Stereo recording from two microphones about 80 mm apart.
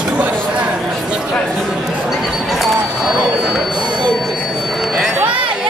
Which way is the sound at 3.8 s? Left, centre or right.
Right.